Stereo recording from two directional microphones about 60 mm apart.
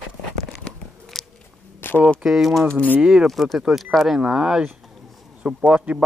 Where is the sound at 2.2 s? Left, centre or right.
Centre.